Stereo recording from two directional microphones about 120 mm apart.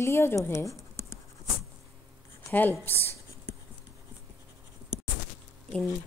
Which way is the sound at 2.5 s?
15° left (ahead or behind).